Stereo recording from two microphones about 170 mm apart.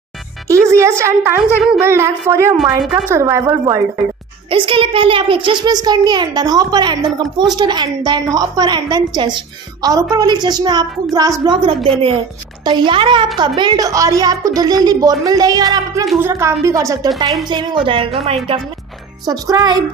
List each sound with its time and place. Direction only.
0.5 s a woman's voice: 15° right (ahead or behind)
2.8 s a woman's voice: centre (ahead or behind)
3.1 s a woman's voice: 15° right (ahead or behind)
4.5 s a woman's voice: 30° right (ahead or behind)
19.2 s a woman's voice: 20° right (ahead or behind)